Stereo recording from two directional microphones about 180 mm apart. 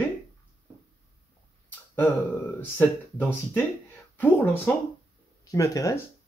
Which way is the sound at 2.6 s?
10° left (ahead or behind).